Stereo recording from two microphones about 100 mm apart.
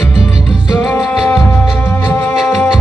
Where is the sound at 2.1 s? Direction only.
15° left (ahead or behind).